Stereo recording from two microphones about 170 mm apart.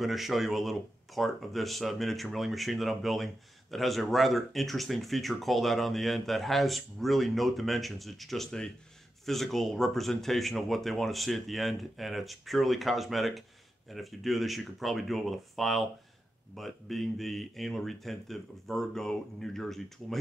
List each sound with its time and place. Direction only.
0.0 s speech: centre (ahead or behind)